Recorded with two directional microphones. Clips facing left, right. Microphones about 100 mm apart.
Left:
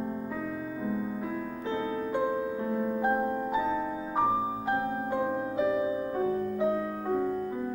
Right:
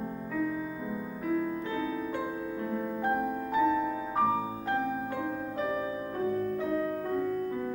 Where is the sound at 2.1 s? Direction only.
20° left (ahead or behind).